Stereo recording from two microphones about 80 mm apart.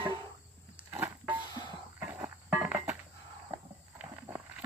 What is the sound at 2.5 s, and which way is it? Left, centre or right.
Cricket, centre.